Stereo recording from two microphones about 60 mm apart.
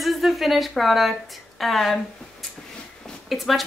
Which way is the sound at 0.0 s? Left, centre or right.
Centre.